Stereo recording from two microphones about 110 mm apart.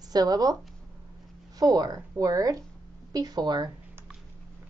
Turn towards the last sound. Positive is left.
turn(degrees=-40)  # may be behind; listen again after turning